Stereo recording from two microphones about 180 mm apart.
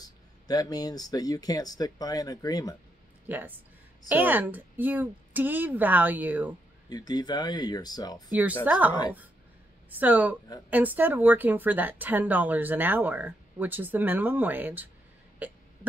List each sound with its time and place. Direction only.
0.0 s speech: 20° left (ahead or behind)
3.3 s speech: 10° right (ahead or behind)
6.9 s speech: 20° left (ahead or behind)
8.3 s speech: 10° right (ahead or behind)
9.9 s speech: 10° right (ahead or behind)
15.3 s hiccup: 10° right (ahead or behind)